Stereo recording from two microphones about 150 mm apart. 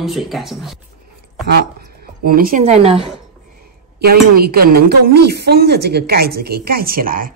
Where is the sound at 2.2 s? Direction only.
70° right (ahead or behind).